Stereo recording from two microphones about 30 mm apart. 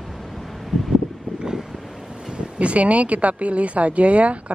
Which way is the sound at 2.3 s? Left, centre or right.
Right.